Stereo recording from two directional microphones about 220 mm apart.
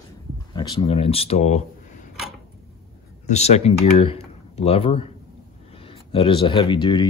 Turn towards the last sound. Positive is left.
turn(degrees=20)  # may be behind; listen again after turning